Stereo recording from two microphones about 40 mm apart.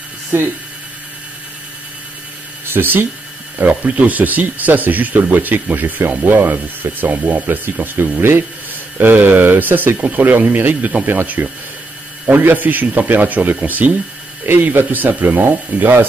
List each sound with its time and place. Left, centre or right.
0.3 s speech: right
2.6 s speech: right
3.6 s speech: right
8.9 s speech: right
9.9 s speech: right
10.2 s speech: right
14.6 s speech: right